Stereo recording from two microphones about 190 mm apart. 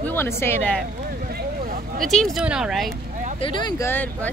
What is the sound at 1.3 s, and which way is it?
Vehicle, 50° right (ahead or behind).